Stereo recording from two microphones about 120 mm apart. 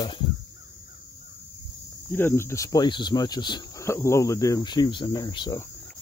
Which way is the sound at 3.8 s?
25° left (ahead or behind).